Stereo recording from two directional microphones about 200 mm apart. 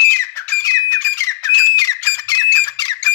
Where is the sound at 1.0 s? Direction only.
15° left (ahead or behind).